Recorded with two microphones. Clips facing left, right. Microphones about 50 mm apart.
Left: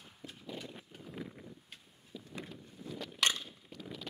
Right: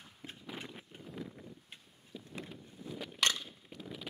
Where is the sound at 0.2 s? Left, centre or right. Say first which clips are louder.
Even; right.